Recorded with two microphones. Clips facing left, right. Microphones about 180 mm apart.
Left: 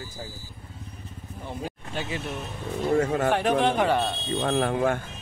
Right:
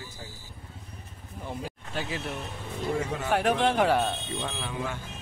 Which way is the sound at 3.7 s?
5° right (ahead or behind).